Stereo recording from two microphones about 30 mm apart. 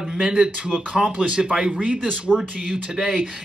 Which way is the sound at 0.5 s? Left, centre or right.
Right.